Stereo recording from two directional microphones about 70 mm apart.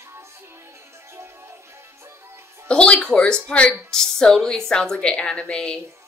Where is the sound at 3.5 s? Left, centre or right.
Centre.